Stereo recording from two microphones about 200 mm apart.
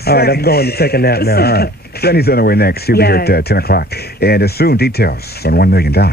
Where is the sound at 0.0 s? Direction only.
50° left (ahead or behind).